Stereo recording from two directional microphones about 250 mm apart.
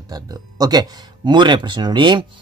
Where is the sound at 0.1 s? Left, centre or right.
Centre.